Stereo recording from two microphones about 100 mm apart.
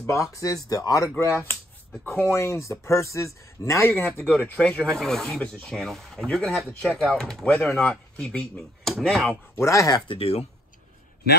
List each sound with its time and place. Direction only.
0.0 s speech: 30° left (ahead or behind)
4.4 s speech: 10° left (ahead or behind)
9.3 s speech: 30° left (ahead or behind)
10.0 s speech: 85° left